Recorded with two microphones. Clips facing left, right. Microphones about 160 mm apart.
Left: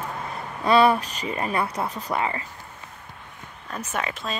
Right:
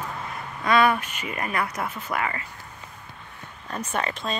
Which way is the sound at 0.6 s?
30° left (ahead or behind).